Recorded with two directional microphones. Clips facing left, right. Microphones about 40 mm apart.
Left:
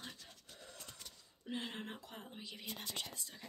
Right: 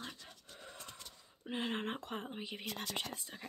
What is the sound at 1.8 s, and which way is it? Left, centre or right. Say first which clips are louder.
Speech: right 8 dB; right.